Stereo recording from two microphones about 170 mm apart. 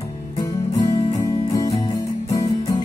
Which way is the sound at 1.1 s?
20° left (ahead or behind).